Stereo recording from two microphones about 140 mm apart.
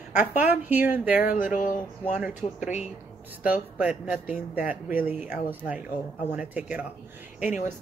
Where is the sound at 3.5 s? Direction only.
10° right (ahead or behind).